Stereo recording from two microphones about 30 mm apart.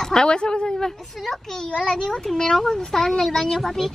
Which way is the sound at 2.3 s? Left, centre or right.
Centre.